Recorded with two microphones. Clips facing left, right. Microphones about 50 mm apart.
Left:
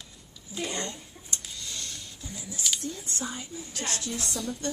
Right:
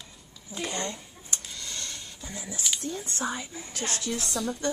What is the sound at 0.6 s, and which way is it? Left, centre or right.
Speech, right.